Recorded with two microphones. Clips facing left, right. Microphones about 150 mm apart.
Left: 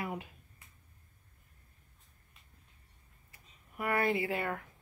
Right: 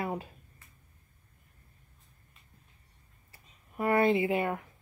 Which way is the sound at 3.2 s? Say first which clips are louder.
Right 2 dB; 30° right (ahead or behind).